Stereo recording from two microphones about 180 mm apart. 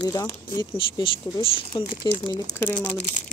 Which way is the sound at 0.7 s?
30° left (ahead or behind).